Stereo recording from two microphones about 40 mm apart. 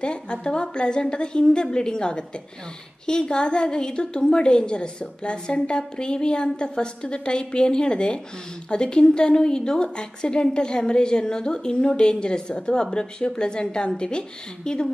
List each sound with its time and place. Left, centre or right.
0.0 s a woman's voice: left